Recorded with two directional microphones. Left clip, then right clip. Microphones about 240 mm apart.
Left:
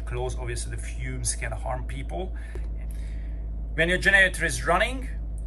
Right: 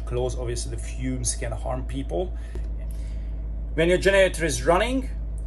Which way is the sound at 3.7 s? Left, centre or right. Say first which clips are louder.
Right 1 dB; centre.